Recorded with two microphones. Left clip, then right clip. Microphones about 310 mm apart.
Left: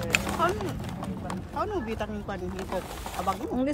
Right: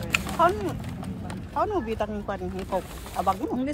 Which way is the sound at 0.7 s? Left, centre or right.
Centre.